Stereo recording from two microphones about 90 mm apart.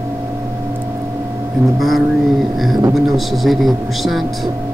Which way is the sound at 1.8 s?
Centre (ahead or behind).